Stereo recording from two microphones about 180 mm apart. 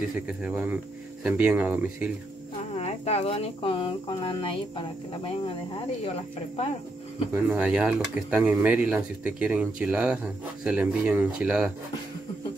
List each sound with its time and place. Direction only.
0.3 s speech: 5° right (ahead or behind)
2.5 s speech: 35° left (ahead or behind)
7.3 s speech: 10° right (ahead or behind)